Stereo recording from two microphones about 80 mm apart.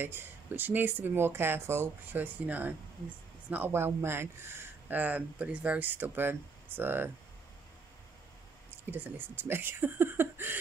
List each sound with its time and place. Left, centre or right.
0.0 s speech: right
8.9 s speech: right